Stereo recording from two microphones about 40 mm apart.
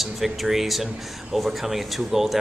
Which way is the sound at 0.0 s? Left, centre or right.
Centre.